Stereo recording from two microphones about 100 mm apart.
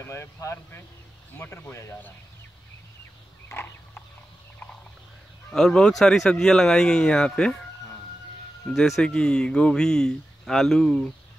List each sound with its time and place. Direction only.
0.0 s speech: 25° left (ahead or behind)
3.4 s a sound: 20° left (ahead or behind)
5.5 s speech: 5° left (ahead or behind)